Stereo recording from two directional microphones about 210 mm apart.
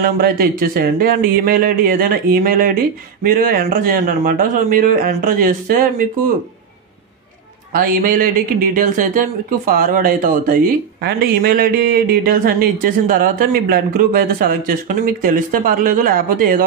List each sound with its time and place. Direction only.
0.0 s speech: 45° right (ahead or behind)
7.7 s speech: 40° right (ahead or behind)